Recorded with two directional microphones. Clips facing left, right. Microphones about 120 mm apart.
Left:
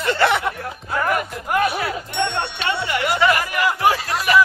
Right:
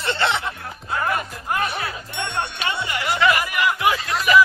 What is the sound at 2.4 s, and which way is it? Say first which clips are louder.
Music: left 3 dB; 20° right (ahead or behind).